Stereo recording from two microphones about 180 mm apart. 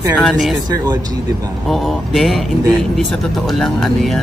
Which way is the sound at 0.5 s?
20° right (ahead or behind).